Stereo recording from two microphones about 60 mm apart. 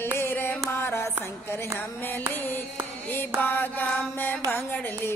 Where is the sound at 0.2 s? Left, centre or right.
Left.